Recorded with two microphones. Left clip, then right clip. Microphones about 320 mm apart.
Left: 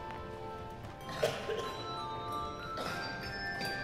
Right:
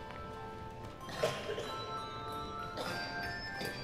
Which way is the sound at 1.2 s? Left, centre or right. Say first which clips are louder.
Left 2 dB; left.